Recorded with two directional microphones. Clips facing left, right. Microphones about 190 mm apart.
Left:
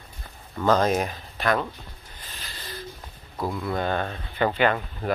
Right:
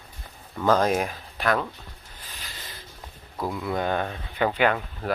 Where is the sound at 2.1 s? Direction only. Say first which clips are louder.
Left 1 dB; 15° right (ahead or behind).